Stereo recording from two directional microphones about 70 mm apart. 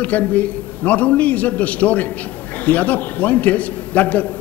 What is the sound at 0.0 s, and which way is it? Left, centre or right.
A man's voice, left.